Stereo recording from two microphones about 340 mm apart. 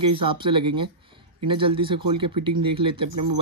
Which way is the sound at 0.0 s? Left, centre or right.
Centre.